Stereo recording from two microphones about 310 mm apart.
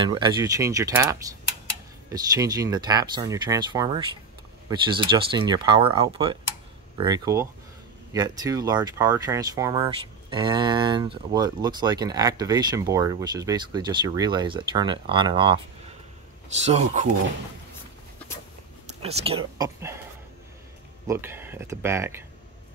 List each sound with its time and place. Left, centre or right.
0.0 s speech: centre
16.6 s speech: right
19.0 s speech: centre
21.1 s speech: centre